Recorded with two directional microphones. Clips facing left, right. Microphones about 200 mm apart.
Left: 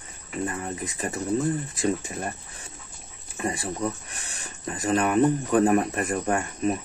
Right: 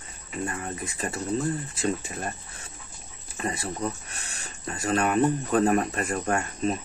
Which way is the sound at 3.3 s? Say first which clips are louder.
Left 2 dB; 15° left (ahead or behind).